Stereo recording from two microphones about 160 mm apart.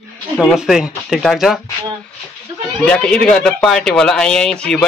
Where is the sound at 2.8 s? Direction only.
5° left (ahead or behind).